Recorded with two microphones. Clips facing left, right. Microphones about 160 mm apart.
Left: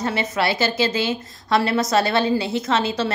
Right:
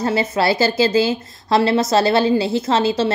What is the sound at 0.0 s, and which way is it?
A woman's voice, 35° right (ahead or behind).